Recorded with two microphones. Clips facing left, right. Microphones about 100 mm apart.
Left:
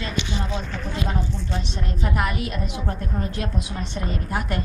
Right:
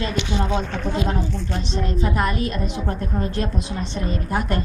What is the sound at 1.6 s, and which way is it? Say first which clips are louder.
A woman's voice: right 5 dB; 10° left (ahead or behind).